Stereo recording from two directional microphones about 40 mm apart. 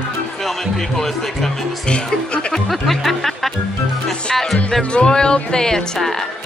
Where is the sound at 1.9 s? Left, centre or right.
Left.